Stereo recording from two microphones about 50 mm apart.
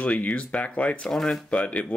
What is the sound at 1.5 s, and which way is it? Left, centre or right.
Speech, left.